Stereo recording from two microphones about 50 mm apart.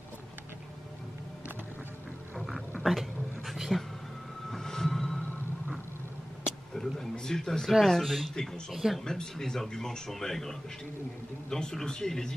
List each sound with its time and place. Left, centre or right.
2.8 s a sound: centre
4.5 s vehicle: centre
6.7 s a sound: centre
7.8 s speech: centre
9.0 s speech: centre
11.5 s speech: centre